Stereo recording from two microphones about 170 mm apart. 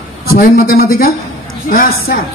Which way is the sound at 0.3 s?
60° left (ahead or behind).